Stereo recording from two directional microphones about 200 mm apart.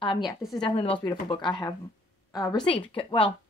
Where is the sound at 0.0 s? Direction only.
25° left (ahead or behind).